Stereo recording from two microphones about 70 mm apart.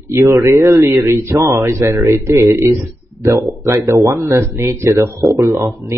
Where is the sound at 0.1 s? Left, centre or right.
Right.